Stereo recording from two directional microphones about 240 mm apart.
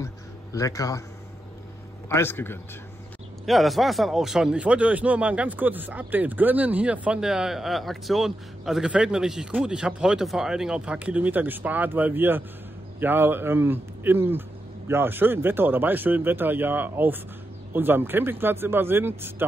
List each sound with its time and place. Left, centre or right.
0.0 s music: centre
2.0 s a man's voice: centre